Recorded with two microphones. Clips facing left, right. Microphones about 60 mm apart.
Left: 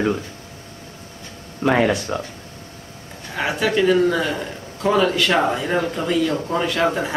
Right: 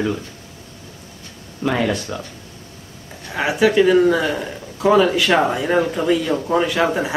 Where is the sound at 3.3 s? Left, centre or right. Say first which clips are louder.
Right 5 dB; centre.